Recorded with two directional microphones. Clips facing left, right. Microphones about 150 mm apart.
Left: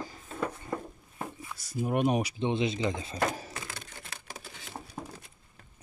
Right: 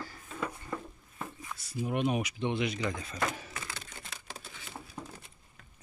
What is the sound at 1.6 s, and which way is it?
Speech, 45° left (ahead or behind).